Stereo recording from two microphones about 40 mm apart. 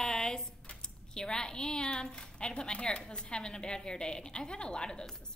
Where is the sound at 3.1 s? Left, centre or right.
Left.